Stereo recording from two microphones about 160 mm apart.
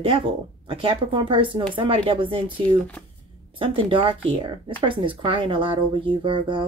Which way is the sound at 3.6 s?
35° right (ahead or behind).